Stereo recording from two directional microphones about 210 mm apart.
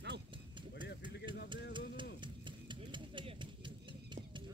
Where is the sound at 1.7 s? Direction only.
20° right (ahead or behind).